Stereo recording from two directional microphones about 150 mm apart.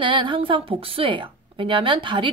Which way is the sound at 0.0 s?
35° right (ahead or behind).